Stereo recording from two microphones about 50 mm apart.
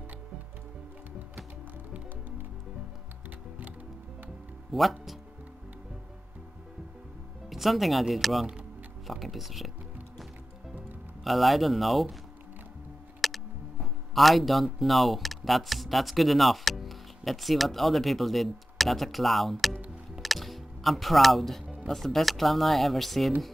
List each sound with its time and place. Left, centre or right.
3.3 s music: right
4.7 s speech: centre
7.4 s speech: centre
11.2 s speech: centre
13.2 s music: centre
14.1 s speech: centre
20.2 s music: centre
21.8 s speech: centre